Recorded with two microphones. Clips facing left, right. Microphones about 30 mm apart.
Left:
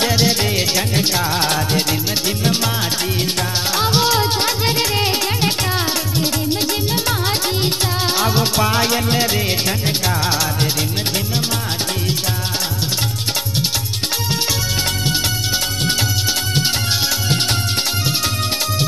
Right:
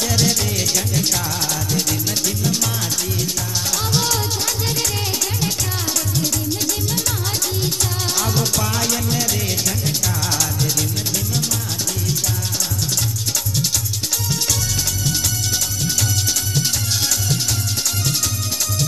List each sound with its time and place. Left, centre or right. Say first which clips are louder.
0.1 s music: left 3 dB; left
3.7 s music: left 6 dB; left
8.2 s music: left 4 dB; left